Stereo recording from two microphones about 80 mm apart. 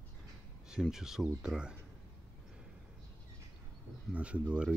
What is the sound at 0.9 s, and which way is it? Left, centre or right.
Speech, centre.